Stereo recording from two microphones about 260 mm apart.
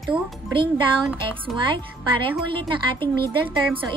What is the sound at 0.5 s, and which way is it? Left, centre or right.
A woman's voice, centre.